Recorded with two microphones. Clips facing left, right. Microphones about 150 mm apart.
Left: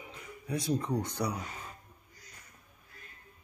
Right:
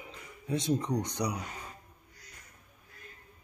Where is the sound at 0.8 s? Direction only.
20° right (ahead or behind).